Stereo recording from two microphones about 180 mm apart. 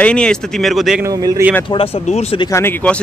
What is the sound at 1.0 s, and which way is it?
Speech, 20° right (ahead or behind).